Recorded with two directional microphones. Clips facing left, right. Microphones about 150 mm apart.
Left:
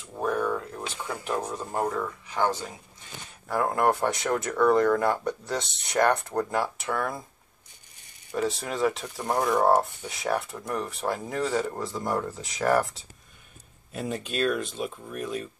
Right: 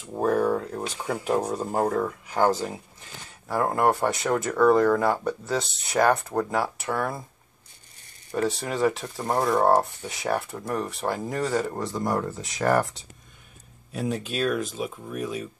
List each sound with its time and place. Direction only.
0.1 s cap gun: 35° right (ahead or behind)
1.3 s speech: 35° right (ahead or behind)
1.6 s speech: 10° right (ahead or behind)
3.3 s speech: centre (ahead or behind)
8.4 s speech: centre (ahead or behind)